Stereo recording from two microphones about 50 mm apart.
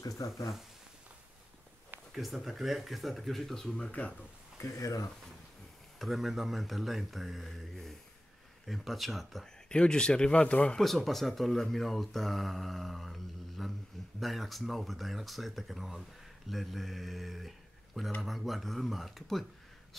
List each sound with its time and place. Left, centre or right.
2.1 s speech: centre
4.6 s speech: left
5.9 s speech: centre
9.7 s speech: centre
10.8 s speech: centre